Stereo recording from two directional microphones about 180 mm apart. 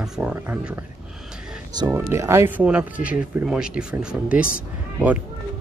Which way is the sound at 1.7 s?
25° right (ahead or behind).